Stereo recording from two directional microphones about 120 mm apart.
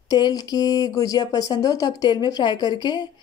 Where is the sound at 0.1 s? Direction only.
30° left (ahead or behind).